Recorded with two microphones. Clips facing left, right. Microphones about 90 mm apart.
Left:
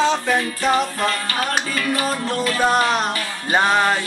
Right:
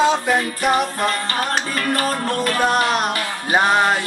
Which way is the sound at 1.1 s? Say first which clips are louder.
Right 1 dB; 35° right (ahead or behind).